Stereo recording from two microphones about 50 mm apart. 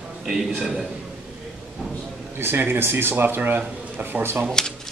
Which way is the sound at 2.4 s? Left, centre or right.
Right.